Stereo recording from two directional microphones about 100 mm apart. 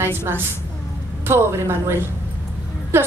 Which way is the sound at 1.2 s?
25° right (ahead or behind).